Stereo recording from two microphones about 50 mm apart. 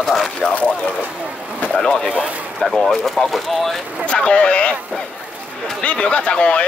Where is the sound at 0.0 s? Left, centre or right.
Centre.